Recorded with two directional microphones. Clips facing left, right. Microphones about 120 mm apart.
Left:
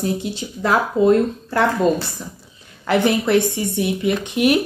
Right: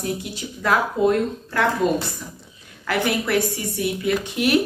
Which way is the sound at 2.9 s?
25° left (ahead or behind).